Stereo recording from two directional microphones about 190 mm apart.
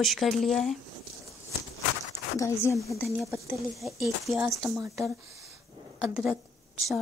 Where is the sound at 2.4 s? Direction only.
15° left (ahead or behind).